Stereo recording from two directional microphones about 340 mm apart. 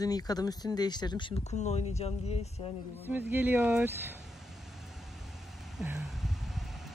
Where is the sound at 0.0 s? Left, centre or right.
Centre.